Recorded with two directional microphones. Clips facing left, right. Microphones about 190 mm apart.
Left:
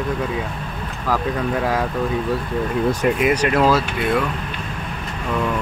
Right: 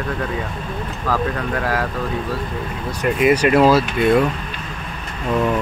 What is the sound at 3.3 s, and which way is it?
Speech, 10° right (ahead or behind).